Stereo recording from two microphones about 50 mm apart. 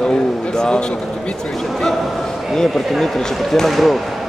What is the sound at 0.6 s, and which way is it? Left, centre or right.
Speech, centre.